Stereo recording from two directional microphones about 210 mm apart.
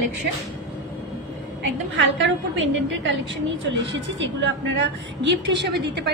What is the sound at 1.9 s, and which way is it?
A woman's voice, 60° right (ahead or behind).